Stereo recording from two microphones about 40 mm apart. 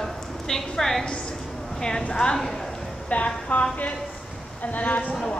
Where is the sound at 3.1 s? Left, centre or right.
Left.